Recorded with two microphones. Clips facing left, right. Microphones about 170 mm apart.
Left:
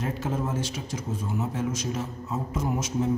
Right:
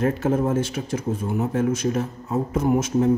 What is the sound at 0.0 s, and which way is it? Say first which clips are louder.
Speech: right 8 dB; 55° right (ahead or behind).